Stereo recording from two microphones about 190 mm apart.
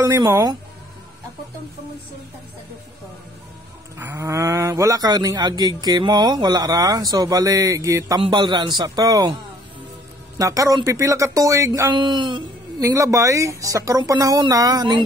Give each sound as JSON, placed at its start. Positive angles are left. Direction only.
{"t": 0.1, "sound": "speech", "side_deg": -15}
{"t": 4.0, "sound": "speech", "side_deg": -15}
{"t": 10.4, "sound": "speech", "side_deg": -15}